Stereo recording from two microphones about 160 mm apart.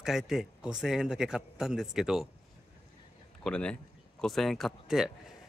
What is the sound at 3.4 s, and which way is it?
Speech, 5° left (ahead or behind).